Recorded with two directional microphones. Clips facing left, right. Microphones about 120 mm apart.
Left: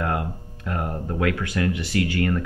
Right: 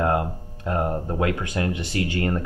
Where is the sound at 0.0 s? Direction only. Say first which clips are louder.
Right 4 dB; 25° right (ahead or behind).